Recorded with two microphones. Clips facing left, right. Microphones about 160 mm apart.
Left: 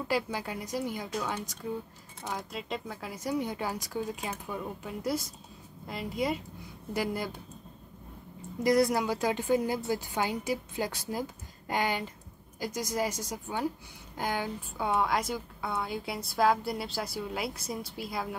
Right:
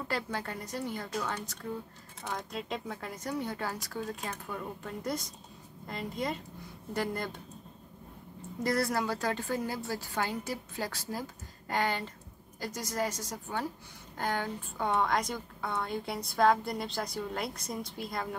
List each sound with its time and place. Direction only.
0.1 s a woman's voice: 10° left (ahead or behind)
8.6 s a woman's voice: 15° left (ahead or behind)